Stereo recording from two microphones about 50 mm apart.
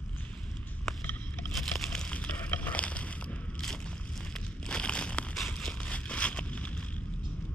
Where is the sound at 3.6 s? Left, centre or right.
Centre.